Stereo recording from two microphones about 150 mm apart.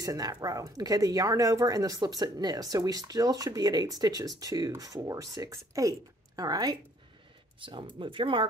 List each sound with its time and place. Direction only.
0.0 s speech: 25° right (ahead or behind)